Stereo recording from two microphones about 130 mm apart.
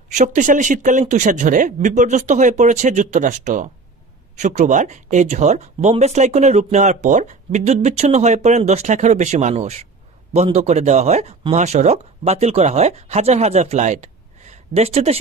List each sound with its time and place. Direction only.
0.1 s speech: 70° right (ahead or behind); by 15.1 s 50° right (ahead or behind)